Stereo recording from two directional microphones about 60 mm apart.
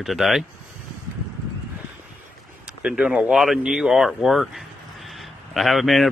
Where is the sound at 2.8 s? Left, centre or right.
Centre.